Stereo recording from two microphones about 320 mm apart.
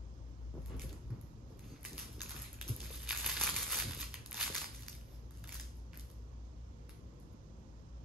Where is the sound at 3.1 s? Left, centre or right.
Centre.